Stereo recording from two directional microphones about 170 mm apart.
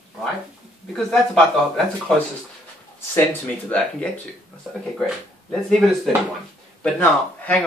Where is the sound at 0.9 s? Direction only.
Centre (ahead or behind).